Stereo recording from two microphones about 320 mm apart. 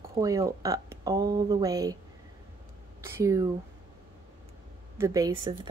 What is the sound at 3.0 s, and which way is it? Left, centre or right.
Speech, centre.